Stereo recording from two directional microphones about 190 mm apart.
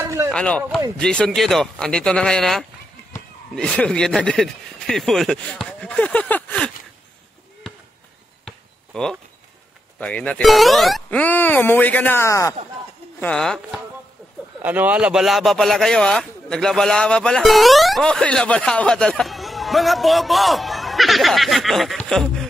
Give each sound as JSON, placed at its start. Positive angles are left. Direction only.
{"t": 0.0, "sound": "a sound", "side_deg": -15}
{"t": 0.3, "sound": "speech", "side_deg": 5}
{"t": 8.5, "sound": "chop", "side_deg": 5}
{"t": 9.9, "sound": "speech", "side_deg": 5}
{"t": 13.2, "sound": "speech", "side_deg": 5}
{"t": 14.6, "sound": "speech", "side_deg": -10}